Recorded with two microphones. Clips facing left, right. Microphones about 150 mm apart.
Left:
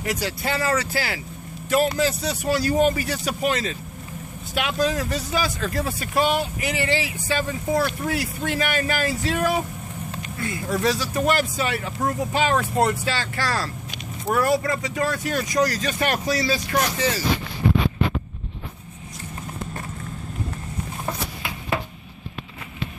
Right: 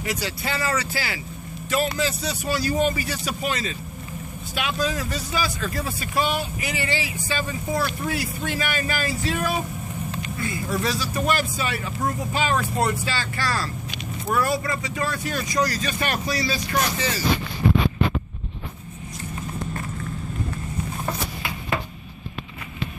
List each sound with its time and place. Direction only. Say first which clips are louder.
0.0 s speech: left 2 dB; 50° left (ahead or behind); by 13.7 s 70° left (ahead or behind)
14.3 s speech: left 3 dB; 55° left (ahead or behind)
14.8 s speech: left 3 dB; 65° left (ahead or behind)